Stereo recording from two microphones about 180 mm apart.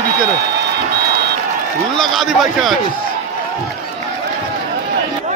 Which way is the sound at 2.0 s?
Centre (ahead or behind).